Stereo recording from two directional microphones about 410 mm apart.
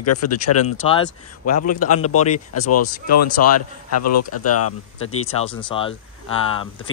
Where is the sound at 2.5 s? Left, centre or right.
Left.